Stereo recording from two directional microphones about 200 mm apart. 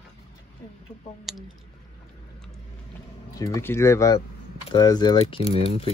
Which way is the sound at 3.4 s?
15° left (ahead or behind).